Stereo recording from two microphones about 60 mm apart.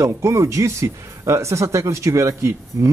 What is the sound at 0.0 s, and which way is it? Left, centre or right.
Speech, right.